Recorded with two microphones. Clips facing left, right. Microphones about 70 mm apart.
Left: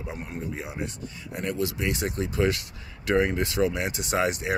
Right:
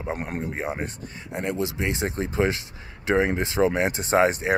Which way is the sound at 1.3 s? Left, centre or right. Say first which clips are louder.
Right 2 dB; right.